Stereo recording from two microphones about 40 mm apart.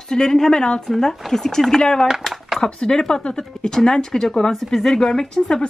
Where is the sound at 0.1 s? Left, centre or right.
Centre.